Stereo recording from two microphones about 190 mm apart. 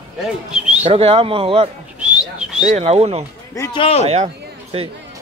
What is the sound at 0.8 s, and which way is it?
Speech, 30° right (ahead or behind).